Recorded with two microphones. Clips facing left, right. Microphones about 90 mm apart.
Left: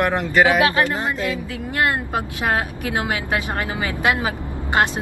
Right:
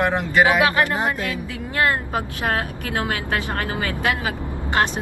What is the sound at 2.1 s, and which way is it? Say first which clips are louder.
Speech: left 2 dB; 20° left (ahead or behind).